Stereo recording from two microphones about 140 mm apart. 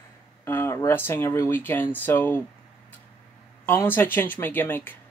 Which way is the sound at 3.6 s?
15° left (ahead or behind).